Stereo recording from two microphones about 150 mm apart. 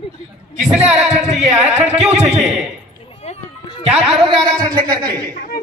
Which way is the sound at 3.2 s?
40° left (ahead or behind).